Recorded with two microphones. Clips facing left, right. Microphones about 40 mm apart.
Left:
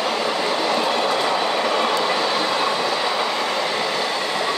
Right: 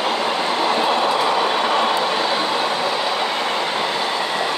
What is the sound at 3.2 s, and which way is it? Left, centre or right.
Train, right.